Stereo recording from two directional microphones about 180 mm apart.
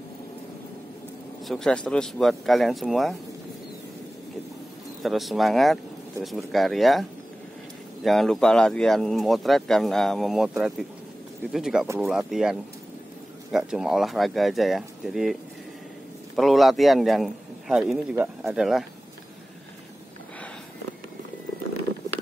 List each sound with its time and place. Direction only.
1.5 s speech: 5° left (ahead or behind)
5.0 s speech: centre (ahead or behind)
16.3 s a man's voice: centre (ahead or behind)